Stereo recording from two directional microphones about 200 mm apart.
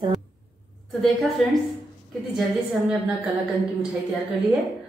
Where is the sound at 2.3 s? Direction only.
Centre (ahead or behind).